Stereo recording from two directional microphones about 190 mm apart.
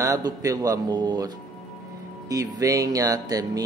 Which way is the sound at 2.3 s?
20° right (ahead or behind).